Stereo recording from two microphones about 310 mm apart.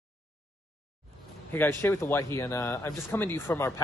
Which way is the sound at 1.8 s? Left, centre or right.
Centre.